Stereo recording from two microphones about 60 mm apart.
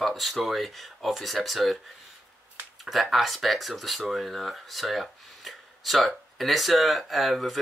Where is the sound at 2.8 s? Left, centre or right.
Centre.